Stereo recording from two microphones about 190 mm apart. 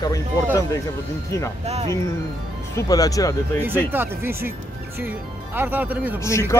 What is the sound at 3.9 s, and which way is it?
Speech, 10° right (ahead or behind).